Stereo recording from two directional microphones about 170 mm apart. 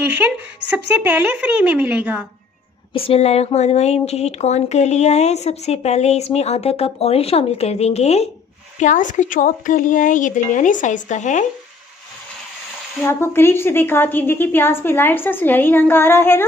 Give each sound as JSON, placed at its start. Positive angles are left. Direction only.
{"t": 1.0, "sound": "a woman's voice", "side_deg": -10}
{"t": 2.9, "sound": "speech", "side_deg": 35}
{"t": 13.0, "sound": "a woman's voice", "side_deg": 15}